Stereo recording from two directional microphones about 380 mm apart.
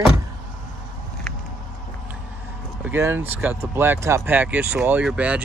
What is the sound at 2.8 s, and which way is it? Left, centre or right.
Speech, centre.